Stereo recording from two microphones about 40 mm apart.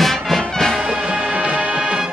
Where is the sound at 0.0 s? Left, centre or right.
Centre.